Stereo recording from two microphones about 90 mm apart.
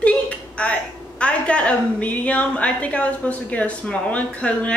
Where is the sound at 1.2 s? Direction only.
15° left (ahead or behind).